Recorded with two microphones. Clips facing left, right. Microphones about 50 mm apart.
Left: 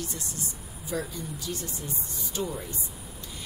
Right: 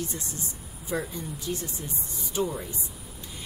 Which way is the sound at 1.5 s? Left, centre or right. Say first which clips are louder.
Right 4 dB; centre.